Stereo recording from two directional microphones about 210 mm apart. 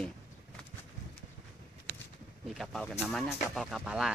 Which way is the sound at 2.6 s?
Centre (ahead or behind).